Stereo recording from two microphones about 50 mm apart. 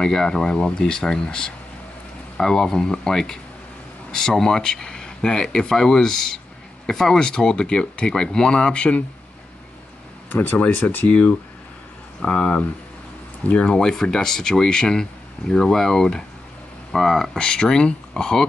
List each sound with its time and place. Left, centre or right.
0.0 s speech: centre
10.3 s speech: left
11.1 s speech: left
13.7 s speech: centre
17.3 s speech: centre